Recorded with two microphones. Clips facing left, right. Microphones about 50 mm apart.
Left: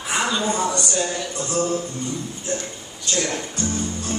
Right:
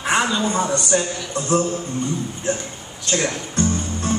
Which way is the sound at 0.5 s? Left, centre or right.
Centre.